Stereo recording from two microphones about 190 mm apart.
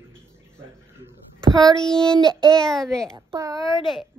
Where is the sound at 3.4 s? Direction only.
15° right (ahead or behind).